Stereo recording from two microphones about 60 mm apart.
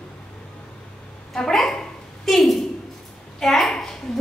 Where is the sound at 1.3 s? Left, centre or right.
Centre.